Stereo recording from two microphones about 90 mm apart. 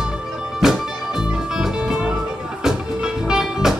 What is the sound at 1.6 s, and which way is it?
Music, 10° right (ahead or behind).